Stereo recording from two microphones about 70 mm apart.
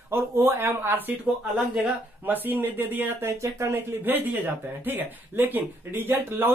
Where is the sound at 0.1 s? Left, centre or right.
Right.